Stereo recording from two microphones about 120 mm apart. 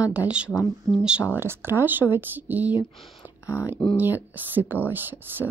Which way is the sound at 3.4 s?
25° left (ahead or behind).